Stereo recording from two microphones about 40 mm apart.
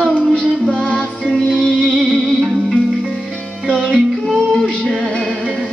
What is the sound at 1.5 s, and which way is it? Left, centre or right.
Music, left.